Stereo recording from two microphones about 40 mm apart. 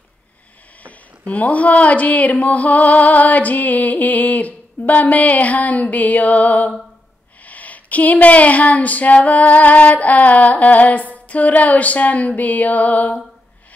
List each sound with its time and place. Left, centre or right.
0.8 s speech: left